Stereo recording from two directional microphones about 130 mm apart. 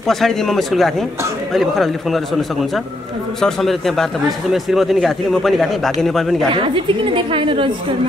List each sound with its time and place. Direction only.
0.1 s a man's voice: 5° left (ahead or behind)
6.5 s a woman's voice: 40° right (ahead or behind)